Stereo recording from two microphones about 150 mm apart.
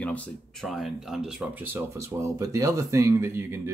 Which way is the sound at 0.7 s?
Centre (ahead or behind).